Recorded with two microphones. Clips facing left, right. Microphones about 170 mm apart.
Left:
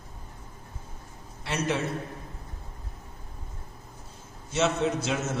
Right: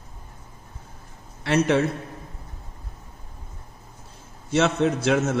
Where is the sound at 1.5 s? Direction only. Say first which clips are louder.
Right 9 dB; 65° right (ahead or behind).